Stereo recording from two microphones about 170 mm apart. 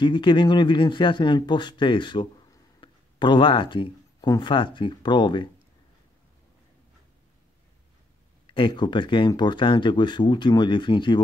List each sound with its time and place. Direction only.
0.0 s speech: 25° left (ahead or behind)
8.5 s speech: 30° left (ahead or behind)